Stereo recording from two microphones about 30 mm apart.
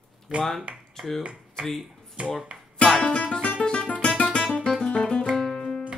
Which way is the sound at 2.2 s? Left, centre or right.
Right.